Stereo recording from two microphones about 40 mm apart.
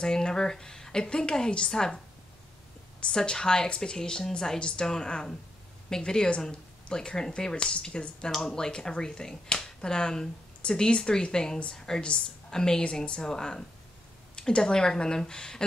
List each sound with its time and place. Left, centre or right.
0.0 s speech: centre
3.1 s a woman's voice: centre
7.5 s a woman's voice: left